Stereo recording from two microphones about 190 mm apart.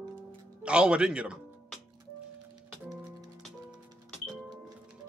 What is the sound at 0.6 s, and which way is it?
Speech, 5° right (ahead or behind).